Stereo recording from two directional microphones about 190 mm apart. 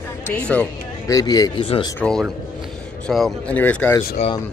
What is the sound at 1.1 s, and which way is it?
Speech, 20° left (ahead or behind).